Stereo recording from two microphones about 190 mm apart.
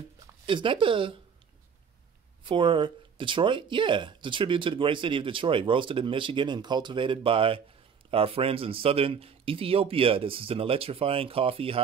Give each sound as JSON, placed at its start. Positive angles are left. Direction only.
{"t": 0.5, "sound": "speech", "side_deg": -25}
{"t": 2.4, "sound": "speech", "side_deg": -25}